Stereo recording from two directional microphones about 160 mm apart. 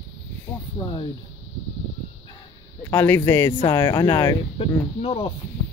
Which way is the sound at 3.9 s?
30° left (ahead or behind).